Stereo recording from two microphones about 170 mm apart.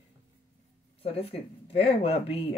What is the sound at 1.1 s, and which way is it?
Speech, 35° left (ahead or behind).